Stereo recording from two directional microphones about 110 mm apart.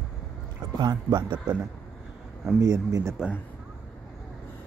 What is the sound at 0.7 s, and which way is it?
Speech, 40° right (ahead or behind).